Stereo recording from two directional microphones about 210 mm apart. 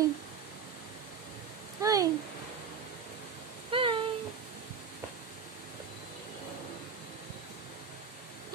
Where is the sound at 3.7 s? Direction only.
25° right (ahead or behind).